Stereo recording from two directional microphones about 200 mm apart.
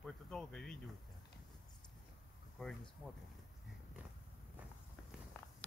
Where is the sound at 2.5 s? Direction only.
5° left (ahead or behind).